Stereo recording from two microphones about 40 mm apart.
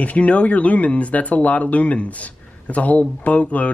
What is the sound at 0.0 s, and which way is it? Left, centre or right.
Speech, left.